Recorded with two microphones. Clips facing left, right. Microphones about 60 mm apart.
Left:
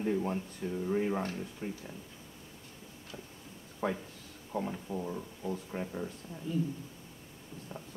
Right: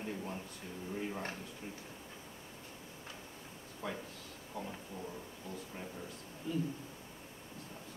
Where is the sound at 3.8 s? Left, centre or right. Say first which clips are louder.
Left 8 dB; left.